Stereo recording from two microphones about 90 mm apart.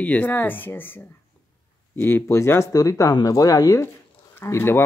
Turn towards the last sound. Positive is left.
turn(degrees=25)  # may be behind; listen again after turning